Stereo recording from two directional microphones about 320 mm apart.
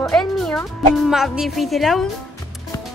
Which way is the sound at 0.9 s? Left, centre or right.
Centre.